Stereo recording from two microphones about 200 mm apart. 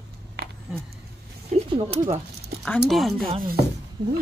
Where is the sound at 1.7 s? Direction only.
30° right (ahead or behind).